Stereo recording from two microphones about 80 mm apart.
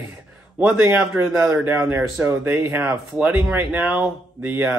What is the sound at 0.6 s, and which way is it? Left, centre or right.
Speech, centre.